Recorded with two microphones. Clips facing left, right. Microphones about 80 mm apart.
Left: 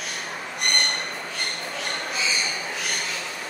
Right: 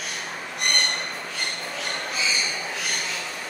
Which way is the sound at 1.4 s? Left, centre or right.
Centre.